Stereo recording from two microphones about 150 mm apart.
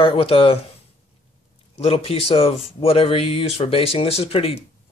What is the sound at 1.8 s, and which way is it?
Speech, 40° left (ahead or behind).